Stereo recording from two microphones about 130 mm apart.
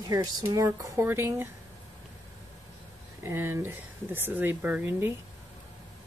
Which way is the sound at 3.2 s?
20° right (ahead or behind).